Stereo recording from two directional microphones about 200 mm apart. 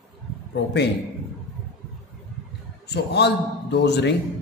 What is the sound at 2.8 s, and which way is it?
Speech, 55° left (ahead or behind).